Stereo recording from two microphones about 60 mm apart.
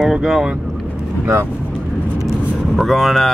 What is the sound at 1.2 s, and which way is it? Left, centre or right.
Speech, right.